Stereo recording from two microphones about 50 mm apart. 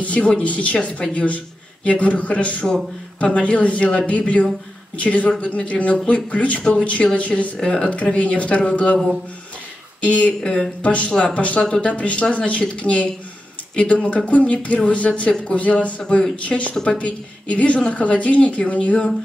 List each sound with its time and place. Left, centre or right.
0.0 s a woman's voice: left
7.5 s a woman's voice: centre
10.0 s a woman's voice: left
10.4 s speech: centre
10.8 s a woman's voice: left